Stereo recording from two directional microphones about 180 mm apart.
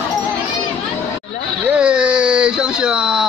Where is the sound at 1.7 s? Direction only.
5° right (ahead or behind).